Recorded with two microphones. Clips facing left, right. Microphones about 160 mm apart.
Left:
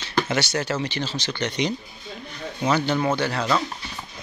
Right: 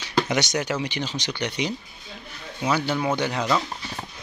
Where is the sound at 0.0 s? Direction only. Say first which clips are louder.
Even; 15° right (ahead or behind).